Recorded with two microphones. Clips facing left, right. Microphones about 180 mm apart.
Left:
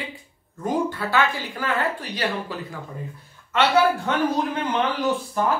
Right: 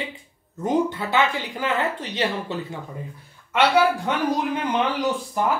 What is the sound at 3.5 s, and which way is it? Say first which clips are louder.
Speech: even; 10° right (ahead or behind).